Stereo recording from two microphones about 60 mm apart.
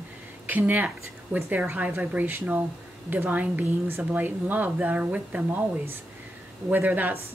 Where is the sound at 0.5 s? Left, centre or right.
Right.